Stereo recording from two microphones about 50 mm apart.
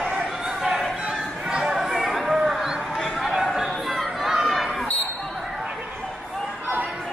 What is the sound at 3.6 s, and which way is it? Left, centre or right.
Chatter, centre.